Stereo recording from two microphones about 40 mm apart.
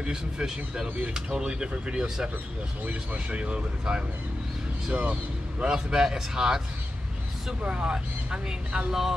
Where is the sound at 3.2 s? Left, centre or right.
Right.